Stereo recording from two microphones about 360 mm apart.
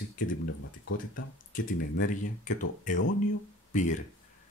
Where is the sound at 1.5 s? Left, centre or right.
Left.